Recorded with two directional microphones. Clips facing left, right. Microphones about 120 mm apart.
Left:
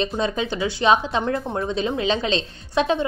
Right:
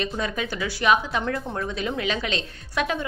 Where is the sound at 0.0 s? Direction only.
25° left (ahead or behind).